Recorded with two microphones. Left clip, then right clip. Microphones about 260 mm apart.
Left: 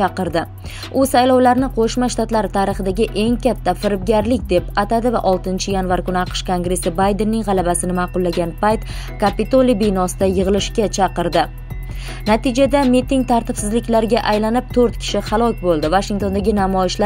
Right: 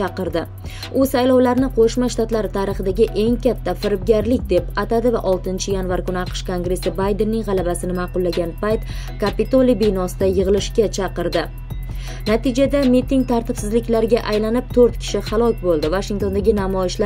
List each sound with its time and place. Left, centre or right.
0.0 s speech: left
12.3 s speech: left